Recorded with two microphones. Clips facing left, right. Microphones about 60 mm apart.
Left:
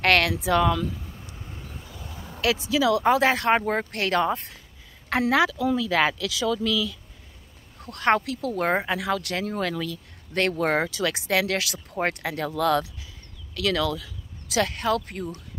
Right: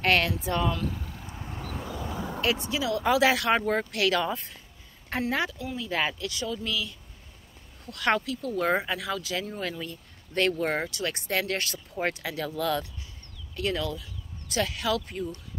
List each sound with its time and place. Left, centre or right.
0.0 s speech: left
1.3 s vehicle: right
1.6 s vehicle: right
2.4 s speech: left
3.0 s speech: left
5.1 s speech: left
8.2 s speech: left
10.6 s speech: left
11.9 s speech: left
13.6 s speech: left
14.7 s speech: left